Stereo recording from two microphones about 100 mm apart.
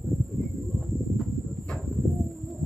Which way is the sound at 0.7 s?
Centre (ahead or behind).